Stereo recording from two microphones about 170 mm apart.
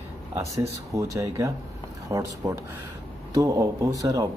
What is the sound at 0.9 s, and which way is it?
Speech, 20° right (ahead or behind).